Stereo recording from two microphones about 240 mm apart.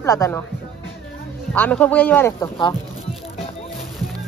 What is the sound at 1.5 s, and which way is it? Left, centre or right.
Speech, centre.